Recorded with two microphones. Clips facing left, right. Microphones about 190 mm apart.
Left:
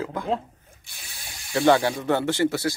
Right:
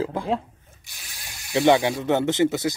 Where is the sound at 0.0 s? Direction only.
30° right (ahead or behind).